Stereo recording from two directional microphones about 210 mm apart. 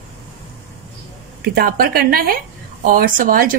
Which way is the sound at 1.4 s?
45° right (ahead or behind).